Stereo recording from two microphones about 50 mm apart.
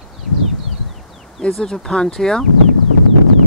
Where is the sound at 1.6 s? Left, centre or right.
Centre.